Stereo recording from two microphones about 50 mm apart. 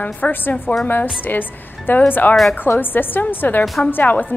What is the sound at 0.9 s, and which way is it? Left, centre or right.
A woman's voice, left.